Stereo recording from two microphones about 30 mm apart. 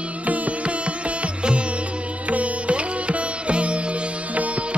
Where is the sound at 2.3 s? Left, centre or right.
Right.